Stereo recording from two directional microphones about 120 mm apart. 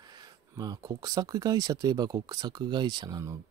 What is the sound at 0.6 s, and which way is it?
Speech, 30° right (ahead or behind).